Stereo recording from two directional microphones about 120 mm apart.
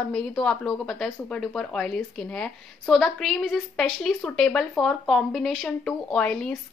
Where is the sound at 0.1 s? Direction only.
5° left (ahead or behind).